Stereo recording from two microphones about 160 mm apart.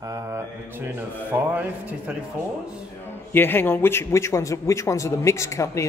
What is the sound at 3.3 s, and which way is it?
A man's voice, 15° left (ahead or behind).